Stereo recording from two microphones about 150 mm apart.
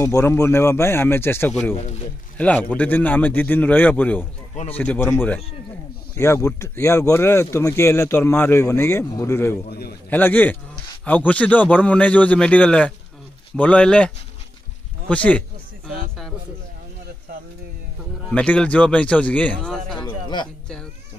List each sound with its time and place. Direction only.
0.0 s a man's voice: 20° left (ahead or behind)
9.7 s a man's voice: 90° left
10.0 s speech: 10° left (ahead or behind)
18.3 s speech: 10° left (ahead or behind)
20.0 s a sound: 30° left (ahead or behind)